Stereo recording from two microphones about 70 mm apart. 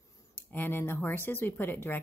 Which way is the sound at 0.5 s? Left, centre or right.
Left.